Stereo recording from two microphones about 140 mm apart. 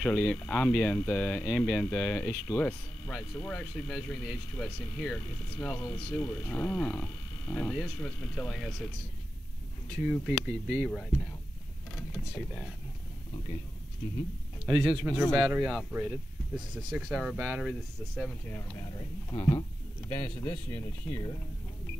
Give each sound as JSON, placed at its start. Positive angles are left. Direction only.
{"t": 0.0, "sound": "speech", "side_deg": 10}
{"t": 10.0, "sound": "speech", "side_deg": -10}
{"t": 14.7, "sound": "speech", "side_deg": -15}
{"t": 18.8, "sound": "speech", "side_deg": 25}
{"t": 20.7, "sound": "speech", "side_deg": 20}